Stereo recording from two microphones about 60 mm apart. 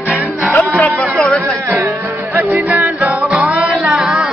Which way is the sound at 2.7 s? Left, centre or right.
Right.